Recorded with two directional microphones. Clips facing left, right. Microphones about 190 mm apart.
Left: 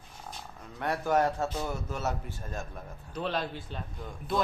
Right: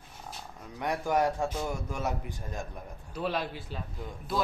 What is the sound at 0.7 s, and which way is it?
A man's voice, 15° right (ahead or behind).